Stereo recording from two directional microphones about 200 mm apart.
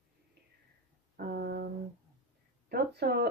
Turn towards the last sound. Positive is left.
turn(degrees=-55)  # may be behind; listen again after turning